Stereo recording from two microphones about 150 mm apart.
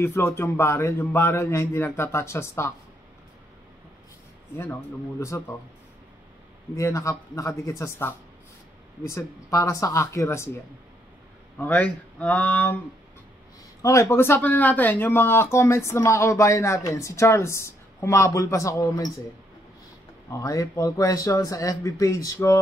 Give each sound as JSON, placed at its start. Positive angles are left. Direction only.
{"t": 0.0, "sound": "a man's voice", "side_deg": 15}
{"t": 5.2, "sound": "speech", "side_deg": 20}
{"t": 6.7, "sound": "a man's voice", "side_deg": 20}
{"t": 13.8, "sound": "speech", "side_deg": 15}
{"t": 20.2, "sound": "speech", "side_deg": 20}